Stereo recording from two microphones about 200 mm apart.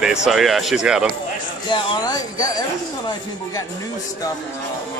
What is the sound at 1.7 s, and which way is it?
Speech, 20° left (ahead or behind).